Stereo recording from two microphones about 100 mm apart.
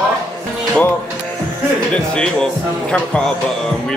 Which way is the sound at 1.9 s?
10° left (ahead or behind).